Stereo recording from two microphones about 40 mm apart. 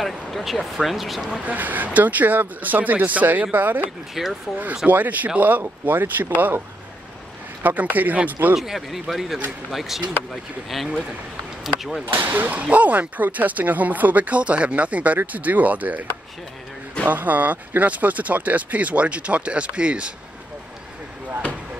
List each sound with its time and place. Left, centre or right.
0.0 s speech: centre
1.4 s speech: right
4.1 s speech: centre
4.8 s speech: right
7.6 s speech: right
8.5 s speech: centre
12.1 s speech: right